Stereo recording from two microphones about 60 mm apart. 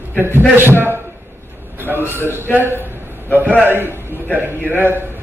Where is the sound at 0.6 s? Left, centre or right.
Right.